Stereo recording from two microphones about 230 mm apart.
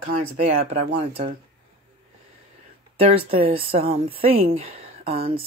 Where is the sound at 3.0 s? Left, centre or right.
Right.